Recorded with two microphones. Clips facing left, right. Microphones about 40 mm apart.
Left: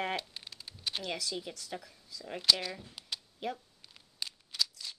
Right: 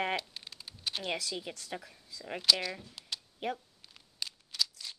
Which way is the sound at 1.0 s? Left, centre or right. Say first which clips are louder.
Right 3 dB; right.